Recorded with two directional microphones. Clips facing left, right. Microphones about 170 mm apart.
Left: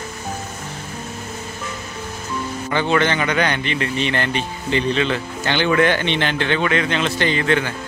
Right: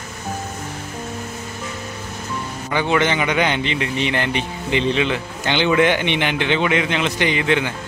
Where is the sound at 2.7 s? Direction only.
15° right (ahead or behind).